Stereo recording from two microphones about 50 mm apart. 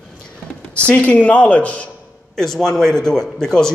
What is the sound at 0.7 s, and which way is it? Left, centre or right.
A man's voice, left.